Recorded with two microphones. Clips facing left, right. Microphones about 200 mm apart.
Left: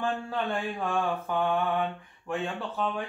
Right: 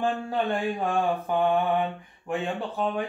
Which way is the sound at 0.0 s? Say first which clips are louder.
Right 4 dB; 15° right (ahead or behind).